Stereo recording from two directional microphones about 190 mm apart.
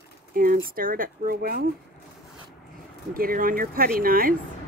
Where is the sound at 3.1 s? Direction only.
50° right (ahead or behind).